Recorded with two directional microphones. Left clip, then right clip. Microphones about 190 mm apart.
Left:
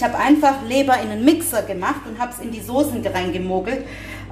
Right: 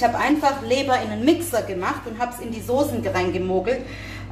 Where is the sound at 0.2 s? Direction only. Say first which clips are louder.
Left 4 dB; 25° left (ahead or behind).